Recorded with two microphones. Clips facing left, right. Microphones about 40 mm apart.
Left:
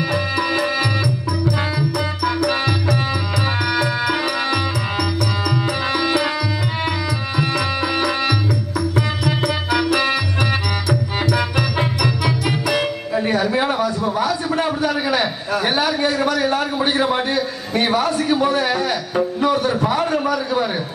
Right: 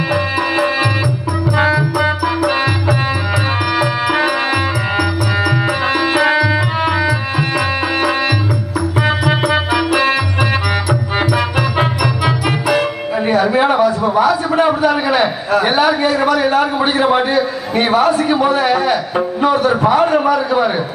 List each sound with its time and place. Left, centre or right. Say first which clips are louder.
0.1 s music: right 5 dB; centre
9.0 s music: right 6 dB; right
9.4 s music: right 4 dB; centre
11.3 s music: right 4 dB; right
14.1 s a sound: right 7 dB; right
16.9 s a man's voice: right 6 dB; centre